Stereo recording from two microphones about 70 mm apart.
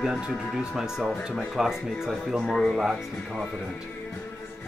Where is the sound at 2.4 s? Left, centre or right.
Centre.